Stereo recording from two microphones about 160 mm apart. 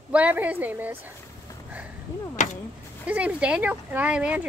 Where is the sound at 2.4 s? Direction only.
50° left (ahead or behind).